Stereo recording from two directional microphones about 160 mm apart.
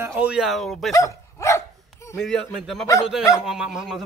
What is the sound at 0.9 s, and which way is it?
Dog, 20° left (ahead or behind).